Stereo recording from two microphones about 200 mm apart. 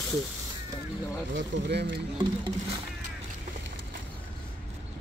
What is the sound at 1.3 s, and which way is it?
Speech, 60° right (ahead or behind).